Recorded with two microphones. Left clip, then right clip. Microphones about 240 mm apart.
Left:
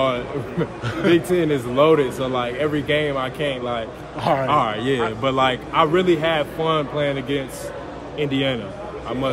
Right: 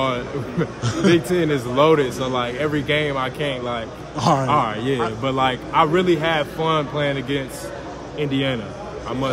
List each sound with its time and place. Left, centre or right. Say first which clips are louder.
0.0 s a man's voice: left 1 dB; centre
4.2 s a man's voice: right 1 dB; centre
4.5 s a man's voice: even; centre